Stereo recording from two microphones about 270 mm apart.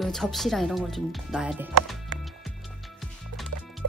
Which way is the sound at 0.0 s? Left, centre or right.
Centre.